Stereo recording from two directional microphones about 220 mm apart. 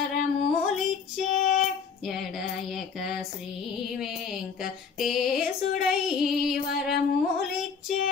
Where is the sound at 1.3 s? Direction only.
35° left (ahead or behind).